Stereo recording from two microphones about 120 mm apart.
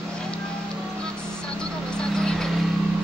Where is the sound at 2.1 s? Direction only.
5° left (ahead or behind).